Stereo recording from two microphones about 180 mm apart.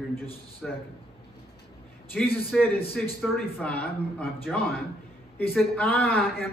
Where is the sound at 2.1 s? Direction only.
5° left (ahead or behind).